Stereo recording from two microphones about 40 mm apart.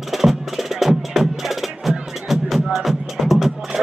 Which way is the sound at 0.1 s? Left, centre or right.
Centre.